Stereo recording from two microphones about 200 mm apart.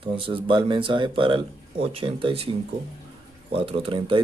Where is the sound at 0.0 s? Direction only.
25° right (ahead or behind).